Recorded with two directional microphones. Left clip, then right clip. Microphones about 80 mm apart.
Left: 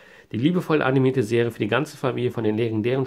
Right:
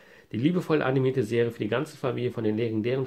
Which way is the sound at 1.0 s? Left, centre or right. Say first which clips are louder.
Left 4 dB; left.